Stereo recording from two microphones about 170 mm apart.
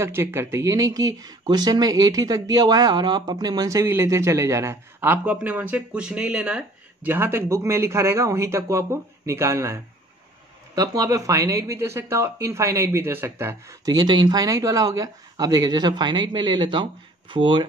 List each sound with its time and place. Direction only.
0.0 s speech: 15° right (ahead or behind); by 17.6 s 30° right (ahead or behind)